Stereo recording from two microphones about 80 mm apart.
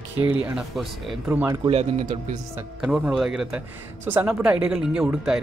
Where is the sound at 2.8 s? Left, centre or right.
Centre.